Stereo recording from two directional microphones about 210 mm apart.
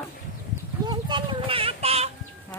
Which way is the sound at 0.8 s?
20° right (ahead or behind).